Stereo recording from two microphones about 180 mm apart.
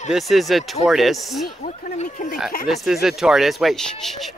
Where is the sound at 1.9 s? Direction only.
45° left (ahead or behind).